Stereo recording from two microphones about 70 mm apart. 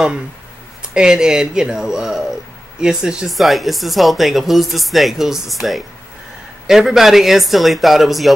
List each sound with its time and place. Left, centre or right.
0.9 s speech: centre